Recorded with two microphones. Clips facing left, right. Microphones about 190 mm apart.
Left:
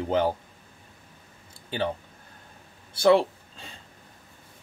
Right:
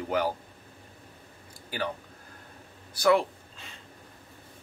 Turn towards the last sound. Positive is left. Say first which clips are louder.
# left 5 dB
turn(degrees=30)  # may be behind; listen again after turning